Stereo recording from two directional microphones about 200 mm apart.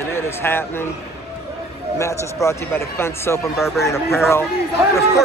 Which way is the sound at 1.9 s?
15° left (ahead or behind).